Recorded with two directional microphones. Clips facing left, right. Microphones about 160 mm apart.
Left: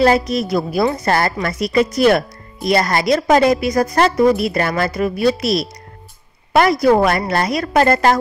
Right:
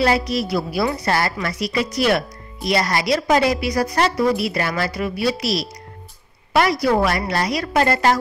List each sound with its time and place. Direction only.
0.5 s a woman's voice: 45° left (ahead or behind)